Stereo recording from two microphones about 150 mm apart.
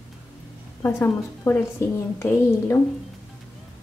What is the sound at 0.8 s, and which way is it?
A woman's voice, 15° left (ahead or behind).